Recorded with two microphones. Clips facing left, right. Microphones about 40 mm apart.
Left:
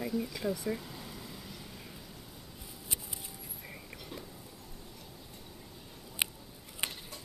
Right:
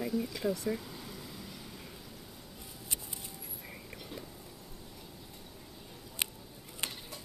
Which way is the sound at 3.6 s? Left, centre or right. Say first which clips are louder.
Left 1 dB; centre.